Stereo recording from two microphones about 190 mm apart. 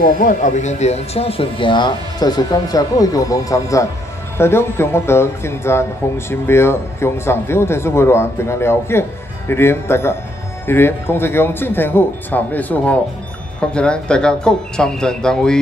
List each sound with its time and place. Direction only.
0.0 s a man's voice: 45° left (ahead or behind); by 15.6 s 5° left (ahead or behind)